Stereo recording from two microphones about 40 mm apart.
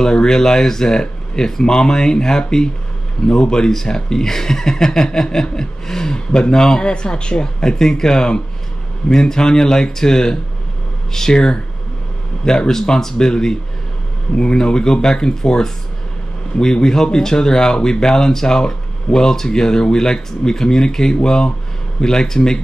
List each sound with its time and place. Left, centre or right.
0.0 s speech: centre